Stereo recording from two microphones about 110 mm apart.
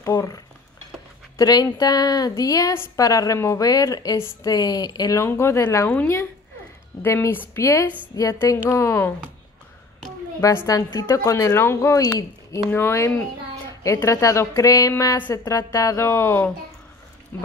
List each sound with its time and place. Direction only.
0.0 s speech: 30° left (ahead or behind)
1.4 s a woman's voice: 35° left (ahead or behind)
5.2 s a woman's voice: 25° left (ahead or behind)
10.4 s a woman's voice: 20° left (ahead or behind)
11.0 s a woman's voice: 30° left (ahead or behind)